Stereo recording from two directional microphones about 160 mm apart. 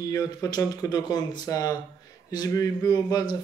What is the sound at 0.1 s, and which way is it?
Speech, 20° left (ahead or behind).